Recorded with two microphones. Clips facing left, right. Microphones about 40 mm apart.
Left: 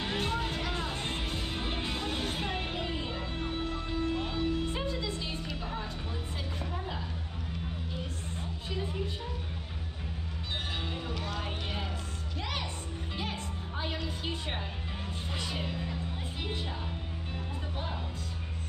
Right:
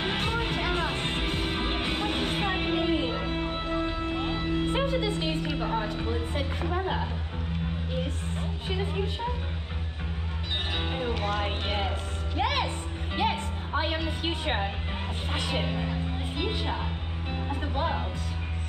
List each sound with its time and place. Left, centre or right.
0.0 s music: right
10.8 s music: right
12.4 s speech: right
13.1 s music: right
15.3 s speech: right
17.3 s music: right